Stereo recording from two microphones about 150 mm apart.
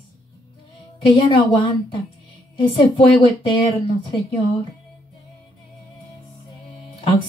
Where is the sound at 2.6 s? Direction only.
30° left (ahead or behind).